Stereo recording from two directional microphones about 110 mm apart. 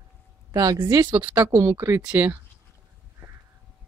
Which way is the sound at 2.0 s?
15° right (ahead or behind).